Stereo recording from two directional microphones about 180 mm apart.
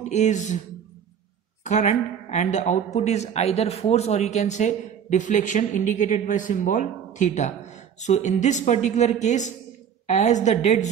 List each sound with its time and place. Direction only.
0.1 s a woman's voice: 40° left (ahead or behind)
1.6 s a woman's voice: 40° left (ahead or behind)